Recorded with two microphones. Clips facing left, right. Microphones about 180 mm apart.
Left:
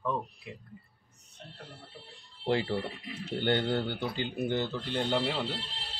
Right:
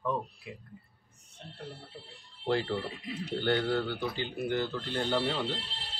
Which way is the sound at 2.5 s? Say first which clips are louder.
Left 1 dB; 15° left (ahead or behind).